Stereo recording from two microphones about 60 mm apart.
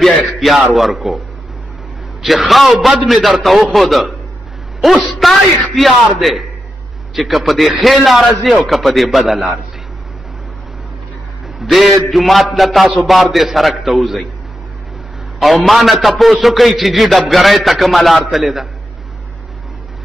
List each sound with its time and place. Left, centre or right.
0.0 s a man's voice: centre
2.2 s a man's voice: centre
11.6 s a man's voice: centre
15.3 s a man's voice: centre